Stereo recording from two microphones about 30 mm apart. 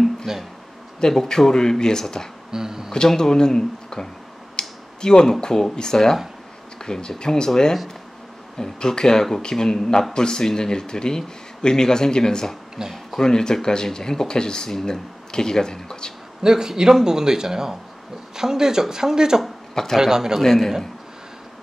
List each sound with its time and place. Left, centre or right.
0.3 s speech: centre
1.0 s speech: centre
2.5 s speech: centre
3.2 s speech: left
4.6 s a sound: left
5.4 s speech: left
16.4 s speech: right
19.7 s a man's voice: centre
20.0 s speech: centre
20.3 s a man's voice: centre